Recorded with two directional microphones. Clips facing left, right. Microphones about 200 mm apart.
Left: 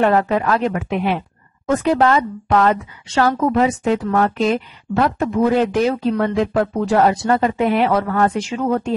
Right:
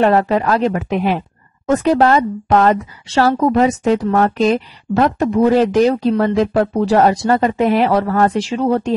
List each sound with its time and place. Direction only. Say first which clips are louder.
0.0 s a woman's voice: right 2 dB; 35° right (ahead or behind)